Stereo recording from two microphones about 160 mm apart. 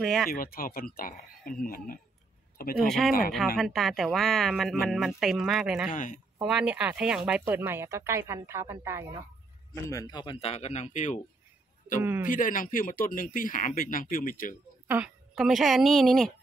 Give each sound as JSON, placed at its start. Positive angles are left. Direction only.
{"t": 0.0, "sound": "speech", "side_deg": 0}
{"t": 0.3, "sound": "speech", "side_deg": 65}
{"t": 3.5, "sound": "speech", "side_deg": 0}
{"t": 5.9, "sound": "speech", "side_deg": 55}
{"t": 6.4, "sound": "speech", "side_deg": -5}
{"t": 9.8, "sound": "speech", "side_deg": 25}
{"t": 12.0, "sound": "speech", "side_deg": -10}
{"t": 12.3, "sound": "speech", "side_deg": 55}
{"t": 14.9, "sound": "a woman's voice", "side_deg": -5}